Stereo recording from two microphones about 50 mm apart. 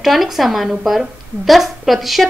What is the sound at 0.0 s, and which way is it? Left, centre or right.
A woman's voice, centre.